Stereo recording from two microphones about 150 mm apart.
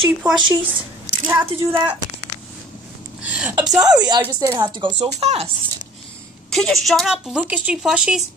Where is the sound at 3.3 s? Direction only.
10° right (ahead or behind).